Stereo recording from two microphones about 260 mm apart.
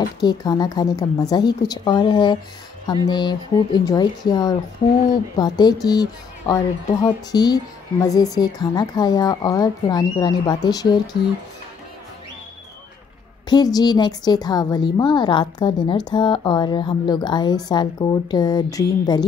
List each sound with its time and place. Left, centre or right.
0.2 s speech: centre
13.5 s speech: centre